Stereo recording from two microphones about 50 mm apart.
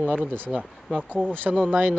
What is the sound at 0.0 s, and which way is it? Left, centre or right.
Speech, right.